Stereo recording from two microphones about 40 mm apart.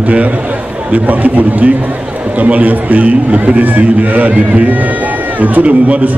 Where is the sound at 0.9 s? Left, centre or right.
Right.